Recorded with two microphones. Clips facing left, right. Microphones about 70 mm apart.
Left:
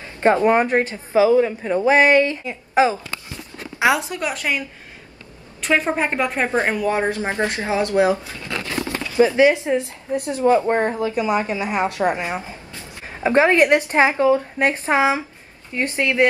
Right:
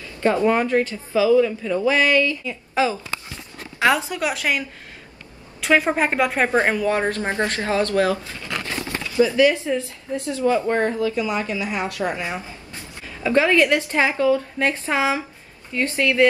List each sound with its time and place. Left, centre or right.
0.0 s a woman's voice: left
4.1 s a woman's voice: centre
5.6 s a woman's voice: centre
6.7 s speech: centre